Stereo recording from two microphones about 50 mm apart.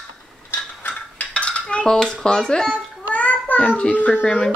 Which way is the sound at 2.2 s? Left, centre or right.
Centre.